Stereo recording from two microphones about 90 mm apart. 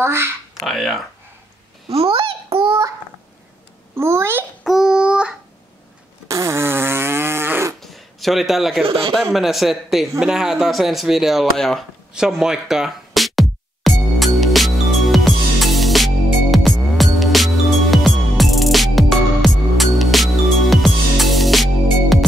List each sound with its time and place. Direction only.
0.0 s a child's voice: 25° right (ahead or behind)
0.6 s speech: centre (ahead or behind)
1.9 s babbling: 90° right
3.9 s a child's voice: 30° right (ahead or behind)
4.6 s child singing: 5° right (ahead or behind)
6.2 s fart: 35° right (ahead or behind)
7.8 s a sound: centre (ahead or behind)
8.8 s a man's voice: 80° right
9.1 s speech: centre (ahead or behind)
12.1 s music: 5° right (ahead or behind)